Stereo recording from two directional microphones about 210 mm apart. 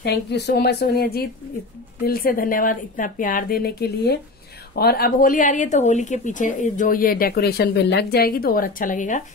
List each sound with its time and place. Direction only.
0.0 s a woman's voice: 50° left (ahead or behind)